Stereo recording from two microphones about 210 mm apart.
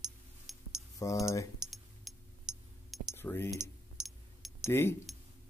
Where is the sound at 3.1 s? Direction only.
10° left (ahead or behind).